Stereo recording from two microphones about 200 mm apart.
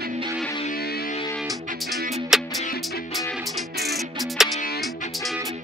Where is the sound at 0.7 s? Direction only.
50° left (ahead or behind).